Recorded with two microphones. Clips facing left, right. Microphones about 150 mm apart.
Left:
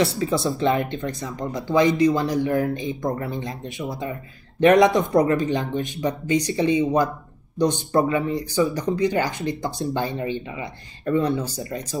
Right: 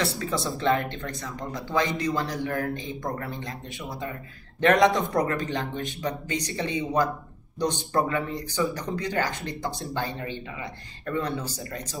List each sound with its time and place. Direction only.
0.0 s speech: 15° left (ahead or behind)